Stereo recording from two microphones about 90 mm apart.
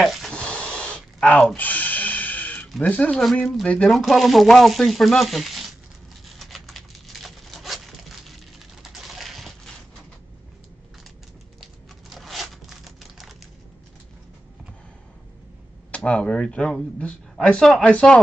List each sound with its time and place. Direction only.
0.0 s a sound: centre (ahead or behind)
0.4 s a sound: 10° left (ahead or behind)
2.8 s speech: 15° left (ahead or behind)
3.2 s speech: 5° left (ahead or behind)
3.9 s speech: centre (ahead or behind)
6.2 s tearing: centre (ahead or behind)
8.8 s typing: centre (ahead or behind)
11.6 s a sound: centre (ahead or behind)
15.9 s speech: 15° left (ahead or behind)